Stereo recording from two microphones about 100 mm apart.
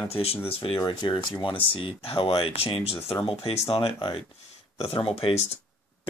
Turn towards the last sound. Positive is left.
turn(degrees=75)  # may be behind; listen again after turning